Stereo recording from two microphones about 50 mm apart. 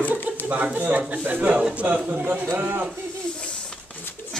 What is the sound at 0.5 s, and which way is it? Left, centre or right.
A man's voice, right.